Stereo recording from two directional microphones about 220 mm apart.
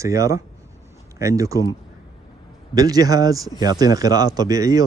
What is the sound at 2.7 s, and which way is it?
Speech, 15° right (ahead or behind).